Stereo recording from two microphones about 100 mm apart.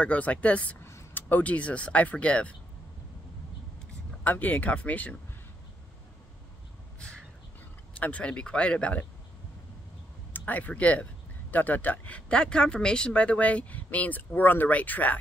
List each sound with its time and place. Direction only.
0.0 s speech: 15° left (ahead or behind)
4.2 s speech: 15° left (ahead or behind)
8.0 s speech: 15° left (ahead or behind)
10.3 s speech: 15° left (ahead or behind)